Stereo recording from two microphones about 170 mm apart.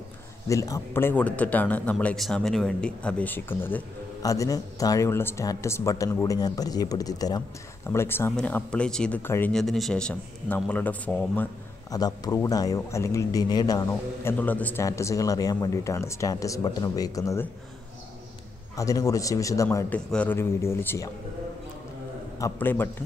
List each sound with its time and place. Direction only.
0.5 s speech: 20° left (ahead or behind)
11.9 s speech: 20° left (ahead or behind)
13.8 s speech: 10° left (ahead or behind)
18.8 s speech: 20° left (ahead or behind)
22.4 s speech: 10° left (ahead or behind)